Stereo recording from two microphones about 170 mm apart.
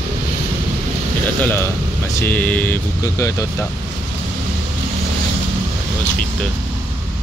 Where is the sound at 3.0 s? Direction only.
20° left (ahead or behind).